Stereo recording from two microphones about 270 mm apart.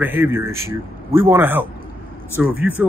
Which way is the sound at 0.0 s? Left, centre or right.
Centre.